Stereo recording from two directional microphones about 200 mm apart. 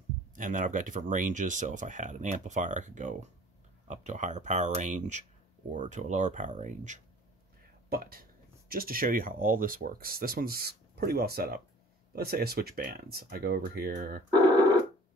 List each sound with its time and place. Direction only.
0.3 s speech: 40° right (ahead or behind)